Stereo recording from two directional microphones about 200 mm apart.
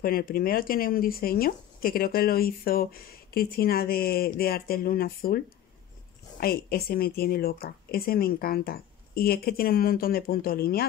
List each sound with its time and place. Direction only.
0.0 s speech: 50° left (ahead or behind)